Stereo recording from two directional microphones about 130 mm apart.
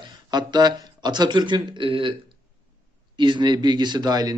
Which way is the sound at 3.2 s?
35° right (ahead or behind).